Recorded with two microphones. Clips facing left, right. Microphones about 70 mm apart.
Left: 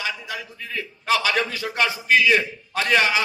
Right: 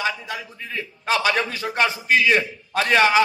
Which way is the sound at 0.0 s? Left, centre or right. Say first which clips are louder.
Right 3 dB; right.